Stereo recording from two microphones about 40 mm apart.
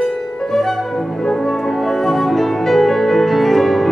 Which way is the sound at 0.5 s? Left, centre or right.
Centre.